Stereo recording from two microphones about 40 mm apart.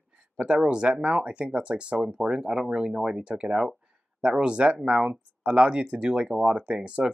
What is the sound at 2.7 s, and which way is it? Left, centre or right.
Speech, right.